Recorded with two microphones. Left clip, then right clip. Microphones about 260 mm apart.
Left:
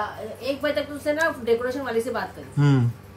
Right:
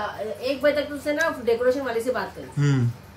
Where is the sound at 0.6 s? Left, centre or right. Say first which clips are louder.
Right 5 dB; centre.